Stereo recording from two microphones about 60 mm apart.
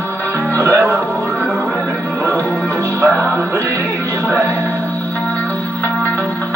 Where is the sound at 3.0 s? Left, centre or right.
Right.